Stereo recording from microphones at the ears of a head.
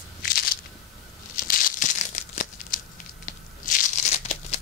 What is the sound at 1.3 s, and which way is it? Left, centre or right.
Crumpling, left.